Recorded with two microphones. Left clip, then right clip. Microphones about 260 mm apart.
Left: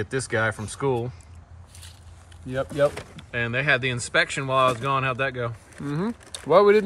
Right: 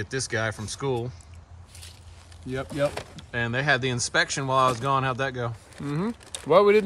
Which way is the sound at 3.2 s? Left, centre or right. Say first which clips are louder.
Left 2 dB; centre.